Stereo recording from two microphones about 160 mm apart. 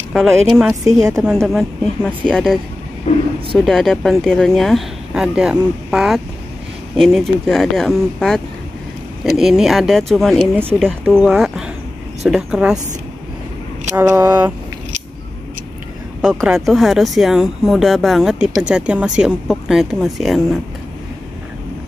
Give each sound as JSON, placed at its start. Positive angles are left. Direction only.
{"t": 0.8, "sound": "speech", "side_deg": -5}
{"t": 3.1, "sound": "vehicle", "side_deg": 40}
{"t": 3.5, "sound": "speech", "side_deg": 0}
{"t": 9.4, "sound": "speech", "side_deg": 0}
{"t": 10.5, "sound": "speech", "side_deg": -15}
{"t": 10.8, "sound": "speech", "side_deg": 5}
{"t": 13.9, "sound": "speech", "side_deg": -15}
{"t": 16.2, "sound": "speech", "side_deg": -5}